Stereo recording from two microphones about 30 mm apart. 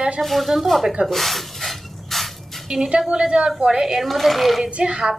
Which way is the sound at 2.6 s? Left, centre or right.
Centre.